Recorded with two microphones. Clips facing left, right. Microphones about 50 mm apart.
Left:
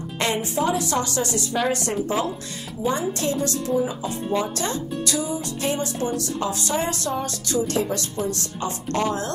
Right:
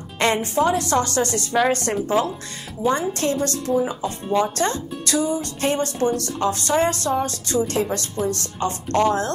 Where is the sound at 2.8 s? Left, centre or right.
Right.